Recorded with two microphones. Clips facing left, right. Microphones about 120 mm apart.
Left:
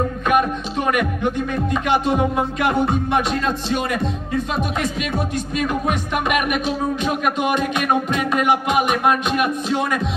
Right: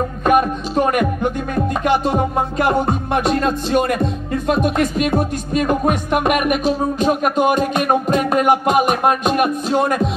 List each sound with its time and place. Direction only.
0.3 s music: 40° right (ahead or behind)